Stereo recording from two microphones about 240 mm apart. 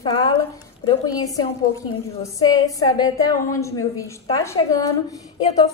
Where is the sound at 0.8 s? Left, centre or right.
Centre.